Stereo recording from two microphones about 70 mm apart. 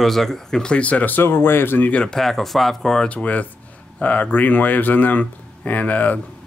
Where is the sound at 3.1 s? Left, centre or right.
Left.